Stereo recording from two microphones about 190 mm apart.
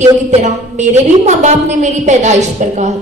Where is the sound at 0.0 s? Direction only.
40° right (ahead or behind).